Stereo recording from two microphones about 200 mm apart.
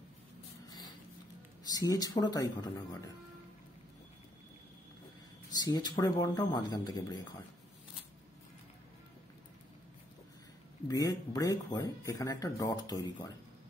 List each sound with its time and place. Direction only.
1.6 s speech: 20° left (ahead or behind)
5.5 s speech: 20° left (ahead or behind)
10.9 s speech: 15° left (ahead or behind)